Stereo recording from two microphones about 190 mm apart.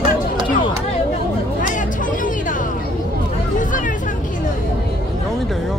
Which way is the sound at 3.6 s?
45° left (ahead or behind).